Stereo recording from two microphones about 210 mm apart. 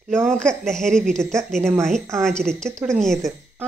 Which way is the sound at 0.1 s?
5° left (ahead or behind).